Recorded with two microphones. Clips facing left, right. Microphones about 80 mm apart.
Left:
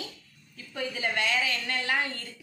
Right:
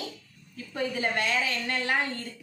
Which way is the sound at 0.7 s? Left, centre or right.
Right.